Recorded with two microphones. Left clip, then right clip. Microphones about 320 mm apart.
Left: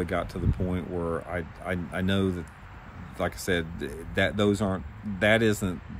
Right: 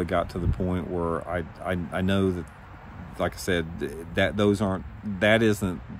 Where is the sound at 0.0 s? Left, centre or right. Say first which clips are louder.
Right 3 dB; centre.